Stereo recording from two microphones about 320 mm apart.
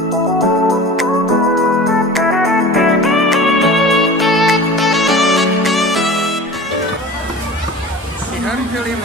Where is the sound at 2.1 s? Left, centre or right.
Centre.